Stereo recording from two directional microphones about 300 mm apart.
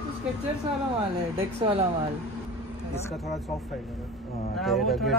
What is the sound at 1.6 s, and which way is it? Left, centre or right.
Speech, centre.